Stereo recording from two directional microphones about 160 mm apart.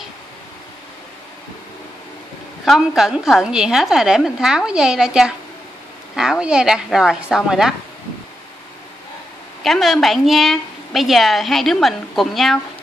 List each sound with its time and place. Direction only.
2.6 s a woman's voice: centre (ahead or behind)
9.6 s a woman's voice: centre (ahead or behind)